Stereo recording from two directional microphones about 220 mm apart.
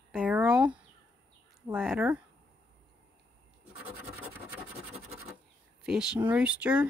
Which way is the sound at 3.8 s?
5° right (ahead or behind).